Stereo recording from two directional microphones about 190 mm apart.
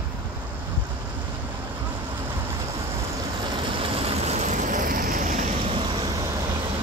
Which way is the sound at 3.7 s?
30° right (ahead or behind).